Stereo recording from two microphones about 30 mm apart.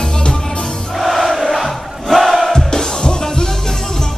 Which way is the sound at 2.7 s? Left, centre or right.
Left.